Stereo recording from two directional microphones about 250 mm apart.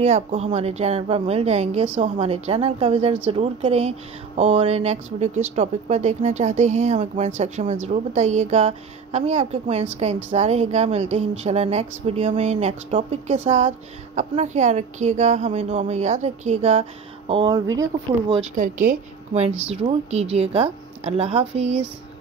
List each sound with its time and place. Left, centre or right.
0.0 s a woman's voice: right
18.3 s a woman's voice: right